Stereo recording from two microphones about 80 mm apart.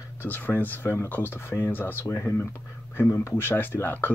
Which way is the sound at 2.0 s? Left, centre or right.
Left.